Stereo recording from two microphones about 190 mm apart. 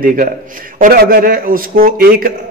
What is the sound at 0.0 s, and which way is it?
A man's voice, 45° right (ahead or behind).